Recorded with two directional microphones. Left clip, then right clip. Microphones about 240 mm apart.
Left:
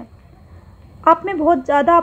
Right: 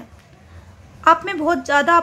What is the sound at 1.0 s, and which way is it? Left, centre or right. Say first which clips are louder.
A woman's voice: left 1 dB; right.